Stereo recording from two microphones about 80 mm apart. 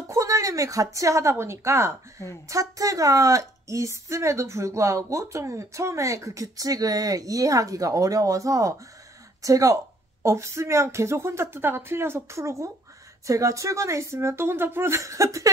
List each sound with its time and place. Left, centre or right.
0.1 s a sound: right
0.9 s a woman's voice: right
2.5 s a woman's voice: right